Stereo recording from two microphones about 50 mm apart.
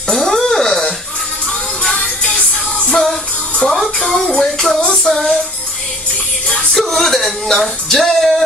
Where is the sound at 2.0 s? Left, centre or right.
Left.